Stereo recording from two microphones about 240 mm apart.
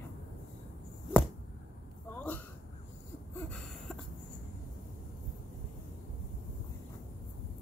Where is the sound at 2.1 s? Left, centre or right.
Centre.